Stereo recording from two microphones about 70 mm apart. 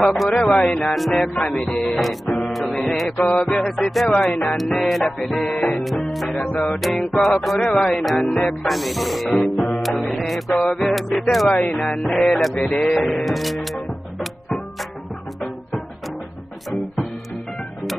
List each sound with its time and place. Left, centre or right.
0.0 s music: centre
2.0 s music: centre
3.2 s music: centre
3.6 s music: centre
5.5 s music: centre
5.8 s music: centre
12.5 s music: centre
16.7 s music: centre